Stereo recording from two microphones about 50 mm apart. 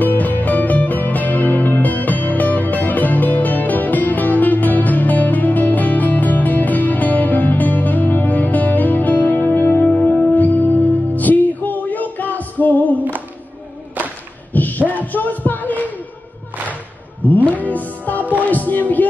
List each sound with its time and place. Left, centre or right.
0.0 s music: left
9.8 s music: left
14.5 s a sound: left
15.0 s music: left
17.5 s music: left
18.4 s a sound: left